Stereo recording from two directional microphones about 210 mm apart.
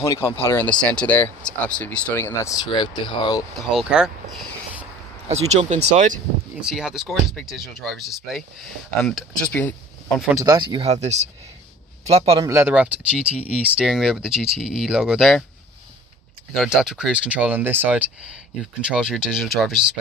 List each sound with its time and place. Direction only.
0.0 s speech: 15° left (ahead or behind)
3.7 s speech: 5° right (ahead or behind)
5.3 s speech: 30° right (ahead or behind)
6.5 s speech: 5° right (ahead or behind)
10.3 s a man's voice: 15° right (ahead or behind)
12.4 s speech: 10° right (ahead or behind)
16.5 s speech: centre (ahead or behind)